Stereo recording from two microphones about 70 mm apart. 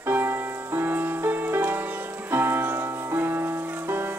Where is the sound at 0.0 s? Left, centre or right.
Right.